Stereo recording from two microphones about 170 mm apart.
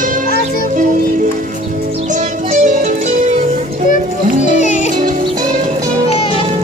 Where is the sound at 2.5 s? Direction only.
45° right (ahead or behind).